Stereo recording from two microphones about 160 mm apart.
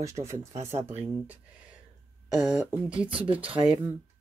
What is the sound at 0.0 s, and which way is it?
Speech, 20° right (ahead or behind).